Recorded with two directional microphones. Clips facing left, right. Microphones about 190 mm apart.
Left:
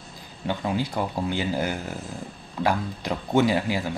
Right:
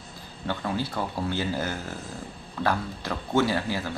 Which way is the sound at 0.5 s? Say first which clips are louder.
Left 3 dB; 15° left (ahead or behind).